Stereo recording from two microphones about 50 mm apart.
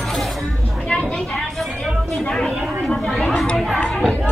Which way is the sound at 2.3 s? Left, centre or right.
Centre.